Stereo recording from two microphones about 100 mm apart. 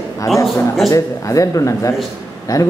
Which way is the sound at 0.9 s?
35° left (ahead or behind).